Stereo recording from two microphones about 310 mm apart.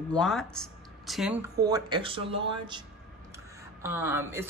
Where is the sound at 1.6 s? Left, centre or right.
Centre.